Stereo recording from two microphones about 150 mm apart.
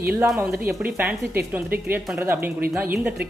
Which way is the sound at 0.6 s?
10° right (ahead or behind).